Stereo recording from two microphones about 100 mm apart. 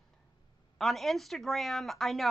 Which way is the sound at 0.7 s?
Centre (ahead or behind).